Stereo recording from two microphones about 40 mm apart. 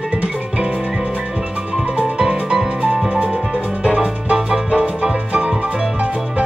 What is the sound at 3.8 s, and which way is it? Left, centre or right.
Music, right.